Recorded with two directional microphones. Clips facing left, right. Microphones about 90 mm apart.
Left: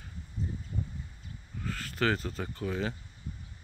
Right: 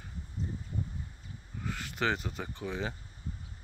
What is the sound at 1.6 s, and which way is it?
Speech, 15° right (ahead or behind).